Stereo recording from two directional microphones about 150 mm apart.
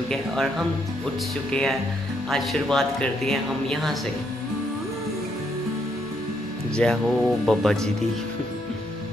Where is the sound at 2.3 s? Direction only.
Centre (ahead or behind).